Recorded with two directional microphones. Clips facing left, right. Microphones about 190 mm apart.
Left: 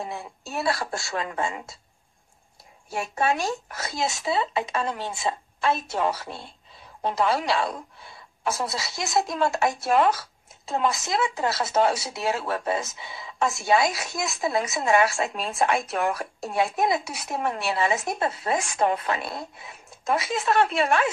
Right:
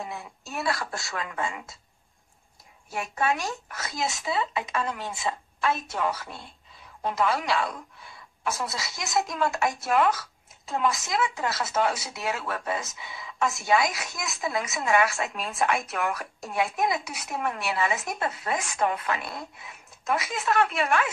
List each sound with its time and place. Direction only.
0.0 s a woman's voice: 30° left (ahead or behind)
2.9 s a woman's voice: 30° left (ahead or behind)